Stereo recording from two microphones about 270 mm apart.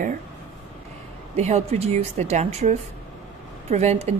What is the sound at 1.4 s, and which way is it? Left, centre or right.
Speech, right.